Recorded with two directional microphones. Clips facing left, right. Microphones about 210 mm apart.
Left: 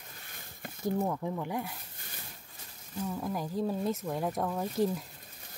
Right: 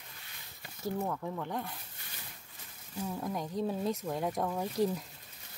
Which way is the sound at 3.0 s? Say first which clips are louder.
Left 2 dB; centre (ahead or behind).